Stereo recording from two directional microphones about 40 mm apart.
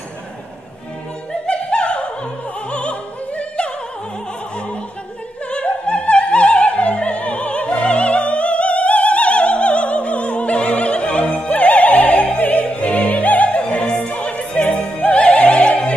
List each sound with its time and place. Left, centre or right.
1.4 s music: left
2.7 s opera: left
5.5 s opera: left
13.6 s opera: left